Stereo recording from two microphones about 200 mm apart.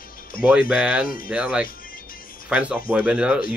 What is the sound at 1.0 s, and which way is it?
Speech, 45° left (ahead or behind).